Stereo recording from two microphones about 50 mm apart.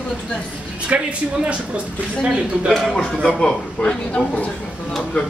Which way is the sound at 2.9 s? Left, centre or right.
Centre.